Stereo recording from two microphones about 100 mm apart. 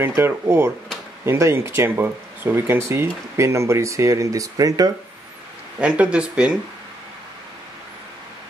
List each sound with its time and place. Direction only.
0.0 s speech: 25° right (ahead or behind)
5.8 s speech: 10° right (ahead or behind)